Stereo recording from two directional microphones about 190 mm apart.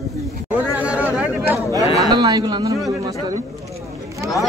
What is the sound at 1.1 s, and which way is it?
Chatter, 10° right (ahead or behind).